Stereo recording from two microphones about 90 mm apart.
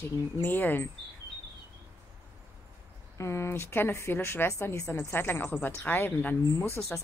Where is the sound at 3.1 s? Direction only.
35° left (ahead or behind).